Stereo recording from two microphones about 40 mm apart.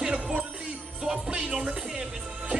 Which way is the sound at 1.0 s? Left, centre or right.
Centre.